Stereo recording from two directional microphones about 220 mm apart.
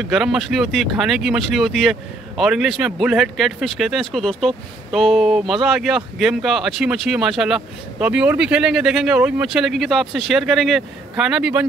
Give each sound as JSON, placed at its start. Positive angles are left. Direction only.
{"t": 0.0, "sound": "speech", "side_deg": 0}